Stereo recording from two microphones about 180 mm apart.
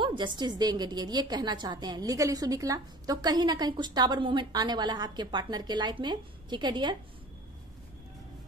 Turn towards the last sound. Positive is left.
turn(degrees=-25)  # may be behind; listen again after turning